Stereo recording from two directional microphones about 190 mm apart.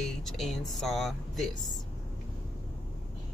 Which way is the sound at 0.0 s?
Centre (ahead or behind).